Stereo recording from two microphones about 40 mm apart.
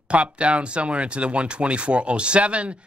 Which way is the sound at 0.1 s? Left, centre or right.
Right.